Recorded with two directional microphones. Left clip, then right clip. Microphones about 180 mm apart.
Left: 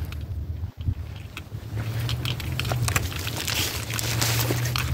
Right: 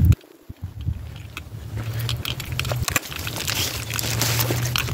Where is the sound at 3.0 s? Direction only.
40° right (ahead or behind).